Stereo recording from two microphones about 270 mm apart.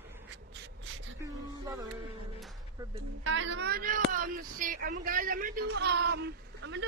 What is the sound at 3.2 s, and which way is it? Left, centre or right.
Speech, right.